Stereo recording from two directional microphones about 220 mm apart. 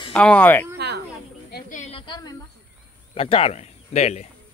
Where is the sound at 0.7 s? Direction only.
50° right (ahead or behind).